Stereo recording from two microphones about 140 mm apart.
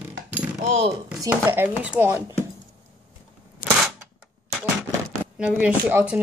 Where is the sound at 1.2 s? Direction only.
20° right (ahead or behind).